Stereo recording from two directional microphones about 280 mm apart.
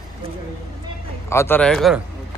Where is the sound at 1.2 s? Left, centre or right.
Centre.